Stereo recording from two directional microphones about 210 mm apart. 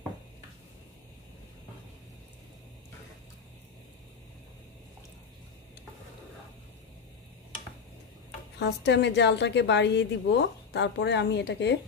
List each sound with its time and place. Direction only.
8.5 s a woman's voice: 55° left (ahead or behind)